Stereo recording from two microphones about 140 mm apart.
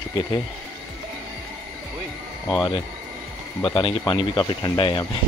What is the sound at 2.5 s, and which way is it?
Speech, 25° left (ahead or behind).